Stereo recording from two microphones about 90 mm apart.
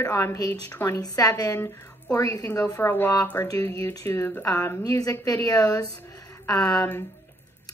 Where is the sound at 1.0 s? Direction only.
45° left (ahead or behind).